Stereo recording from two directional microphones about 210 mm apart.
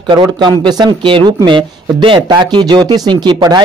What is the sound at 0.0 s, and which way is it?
Speech, 20° right (ahead or behind).